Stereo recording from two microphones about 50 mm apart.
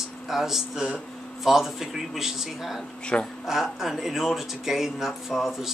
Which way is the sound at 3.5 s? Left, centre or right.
Centre.